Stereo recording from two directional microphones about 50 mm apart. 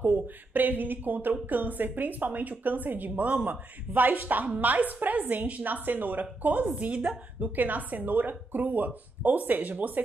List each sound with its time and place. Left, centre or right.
0.0 s a woman's voice: right